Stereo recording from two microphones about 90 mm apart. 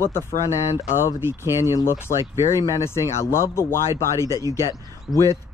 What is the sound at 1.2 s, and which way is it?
Speech, 30° right (ahead or behind).